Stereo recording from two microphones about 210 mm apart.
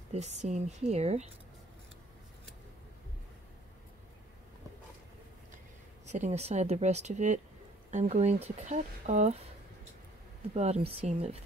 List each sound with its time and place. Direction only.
0.1 s speech: 30° right (ahead or behind)
6.0 s speech: 35° right (ahead or behind)
10.5 s speech: 30° right (ahead or behind)